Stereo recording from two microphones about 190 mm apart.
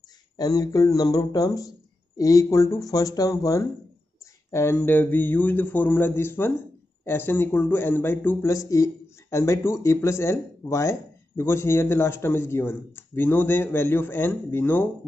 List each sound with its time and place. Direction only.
0.4 s speech: 20° left (ahead or behind)